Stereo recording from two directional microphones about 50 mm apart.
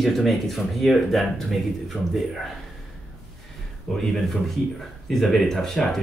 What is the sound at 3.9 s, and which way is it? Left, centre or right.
Speech, centre.